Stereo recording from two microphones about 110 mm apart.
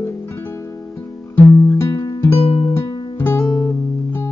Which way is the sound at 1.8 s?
30° left (ahead or behind).